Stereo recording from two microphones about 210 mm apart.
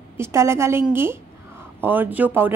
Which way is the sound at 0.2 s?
15° right (ahead or behind).